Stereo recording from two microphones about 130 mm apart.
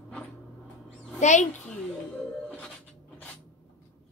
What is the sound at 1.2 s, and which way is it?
Speech, 65° left (ahead or behind).